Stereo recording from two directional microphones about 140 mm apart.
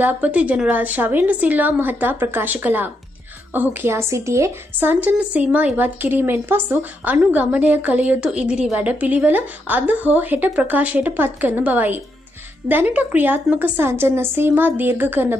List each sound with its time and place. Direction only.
0.0 s a woman's voice: 10° right (ahead or behind)